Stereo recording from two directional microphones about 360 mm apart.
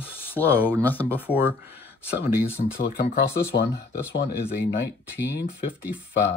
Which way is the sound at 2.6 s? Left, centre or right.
Left.